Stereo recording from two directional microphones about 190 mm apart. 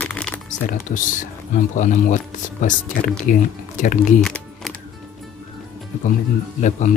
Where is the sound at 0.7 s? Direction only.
40° left (ahead or behind).